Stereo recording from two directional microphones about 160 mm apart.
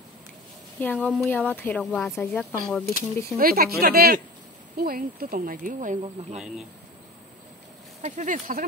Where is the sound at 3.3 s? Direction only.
65° right (ahead or behind).